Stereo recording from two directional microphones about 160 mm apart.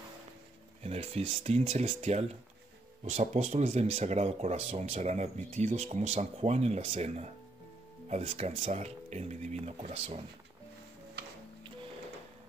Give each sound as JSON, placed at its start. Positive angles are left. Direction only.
{"t": 0.8, "sound": "speech", "side_deg": -40}